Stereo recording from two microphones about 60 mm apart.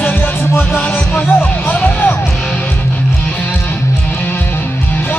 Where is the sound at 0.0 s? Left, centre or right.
Left.